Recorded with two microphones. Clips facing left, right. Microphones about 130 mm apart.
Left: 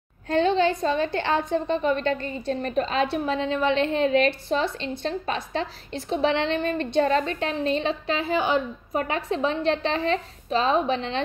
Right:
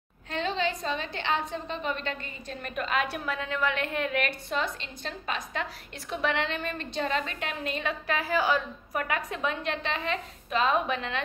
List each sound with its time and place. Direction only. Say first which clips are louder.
0.3 s a woman's voice: left 9 dB; 35° left (ahead or behind)